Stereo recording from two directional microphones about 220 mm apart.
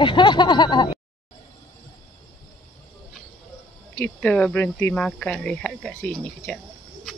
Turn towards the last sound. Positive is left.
turn(degrees=5)  # may be behind; listen again after turning